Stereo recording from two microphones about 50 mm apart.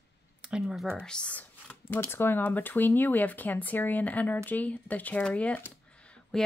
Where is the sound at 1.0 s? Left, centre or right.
Centre.